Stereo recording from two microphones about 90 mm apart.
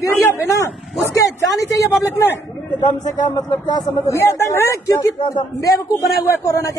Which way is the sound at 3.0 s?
45° left (ahead or behind).